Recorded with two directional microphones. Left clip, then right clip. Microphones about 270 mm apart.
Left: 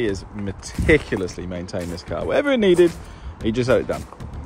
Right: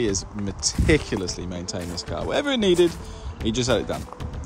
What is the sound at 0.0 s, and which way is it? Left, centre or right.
Speech, centre.